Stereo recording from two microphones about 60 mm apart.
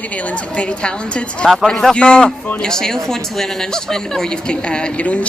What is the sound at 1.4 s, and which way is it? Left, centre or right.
Speech, centre.